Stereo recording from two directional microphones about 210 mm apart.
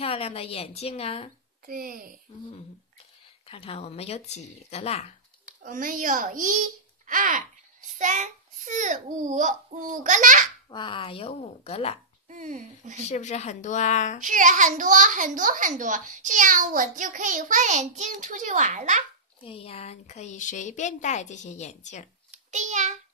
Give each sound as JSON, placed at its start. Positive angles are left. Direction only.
{"t": 0.0, "sound": "speech", "side_deg": 30}
{"t": 1.7, "sound": "a child's voice", "side_deg": -40}
{"t": 3.4, "sound": "speech", "side_deg": 25}
{"t": 5.6, "sound": "a child's voice", "side_deg": -40}
{"t": 10.7, "sound": "speech", "side_deg": 20}
{"t": 12.3, "sound": "a child's voice", "side_deg": -35}
{"t": 13.1, "sound": "speech", "side_deg": 35}
{"t": 14.2, "sound": "a child's voice", "side_deg": -40}
{"t": 19.4, "sound": "speech", "side_deg": 25}
{"t": 22.5, "sound": "a child's voice", "side_deg": -35}